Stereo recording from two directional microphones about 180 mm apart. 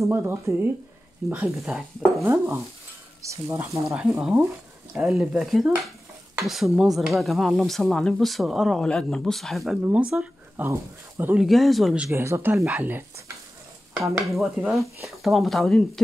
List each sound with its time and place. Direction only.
0.1 s speech: 10° right (ahead or behind)
2.2 s speech: 15° right (ahead or behind)
3.8 s speech: 5° right (ahead or behind)
11.4 s speech: centre (ahead or behind)
12.1 s speech: 15° right (ahead or behind)
14.0 s speech: centre (ahead or behind)